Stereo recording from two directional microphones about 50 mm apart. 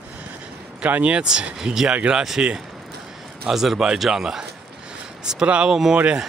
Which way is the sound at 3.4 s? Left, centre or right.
Centre.